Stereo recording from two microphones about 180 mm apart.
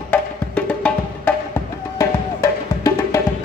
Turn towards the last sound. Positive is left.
turn(degrees=15)  # may be behind; listen again after turning